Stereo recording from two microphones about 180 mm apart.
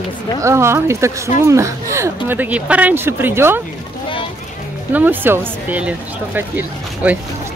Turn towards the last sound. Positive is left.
turn(degrees=-10)  # may be behind; listen again after turning